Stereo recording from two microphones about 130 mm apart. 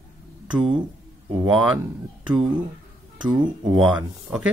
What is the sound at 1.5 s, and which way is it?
Speech, 5° right (ahead or behind).